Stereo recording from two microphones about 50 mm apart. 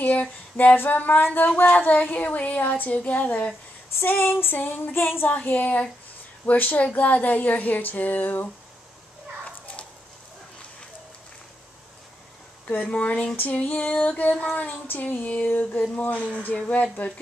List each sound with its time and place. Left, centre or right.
0.0 s speech: left
3.9 s a sound: left
4.6 s speech: left
4.9 s a sound: left
5.3 s speech: left
12.6 s speech: left